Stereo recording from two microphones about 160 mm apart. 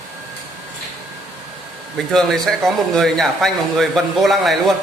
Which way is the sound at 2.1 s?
Centre (ahead or behind).